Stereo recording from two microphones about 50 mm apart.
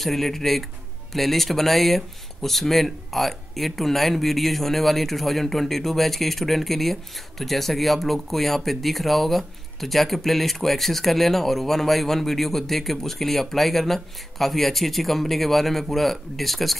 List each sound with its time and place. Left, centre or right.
0.0 s speech: centre